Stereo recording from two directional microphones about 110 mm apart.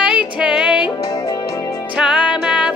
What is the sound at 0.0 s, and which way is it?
Music, 5° right (ahead or behind).